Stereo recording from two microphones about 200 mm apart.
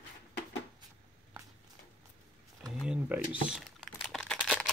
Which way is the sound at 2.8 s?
5° right (ahead or behind).